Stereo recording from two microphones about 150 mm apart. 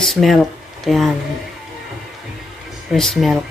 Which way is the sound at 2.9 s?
Centre (ahead or behind).